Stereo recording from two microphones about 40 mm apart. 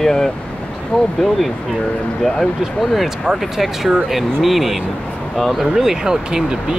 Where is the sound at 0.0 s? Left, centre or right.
Centre.